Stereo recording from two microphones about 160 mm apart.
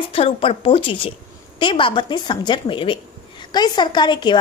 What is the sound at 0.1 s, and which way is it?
A woman's voice, 35° left (ahead or behind).